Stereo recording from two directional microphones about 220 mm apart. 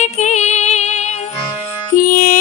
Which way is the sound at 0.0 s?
30° left (ahead or behind).